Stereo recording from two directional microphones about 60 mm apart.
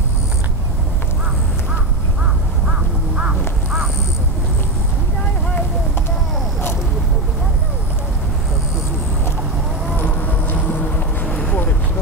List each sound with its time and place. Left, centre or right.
2.7 s crow: centre
9.9 s vehicle: left